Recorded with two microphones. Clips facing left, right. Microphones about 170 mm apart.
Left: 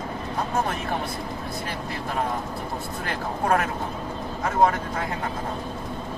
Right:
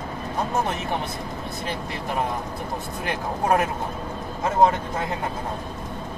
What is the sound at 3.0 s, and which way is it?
Speech, 20° right (ahead or behind).